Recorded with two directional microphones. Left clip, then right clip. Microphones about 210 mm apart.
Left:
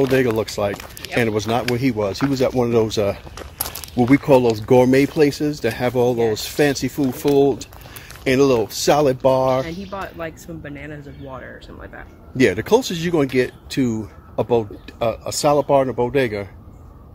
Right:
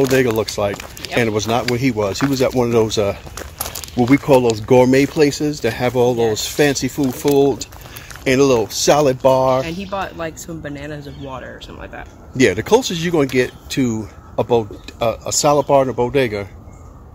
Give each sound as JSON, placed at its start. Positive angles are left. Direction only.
{"t": 0.0, "sound": "speech", "side_deg": 5}
{"t": 3.6, "sound": "a sound", "side_deg": 15}
{"t": 4.6, "sound": "speech", "side_deg": 10}
{"t": 9.7, "sound": "speech", "side_deg": -25}
{"t": 12.4, "sound": "speech", "side_deg": 5}